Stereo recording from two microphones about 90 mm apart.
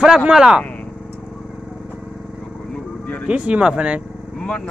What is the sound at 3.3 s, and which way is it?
Speech, 15° right (ahead or behind).